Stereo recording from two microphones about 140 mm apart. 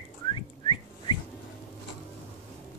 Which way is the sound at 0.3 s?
35° left (ahead or behind).